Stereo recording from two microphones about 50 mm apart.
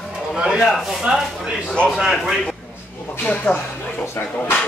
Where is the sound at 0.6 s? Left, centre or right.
Centre.